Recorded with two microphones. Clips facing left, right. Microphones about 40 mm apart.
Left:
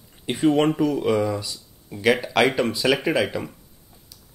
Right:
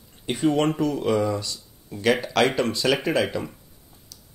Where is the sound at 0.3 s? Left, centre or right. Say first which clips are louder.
Left 2 dB; centre.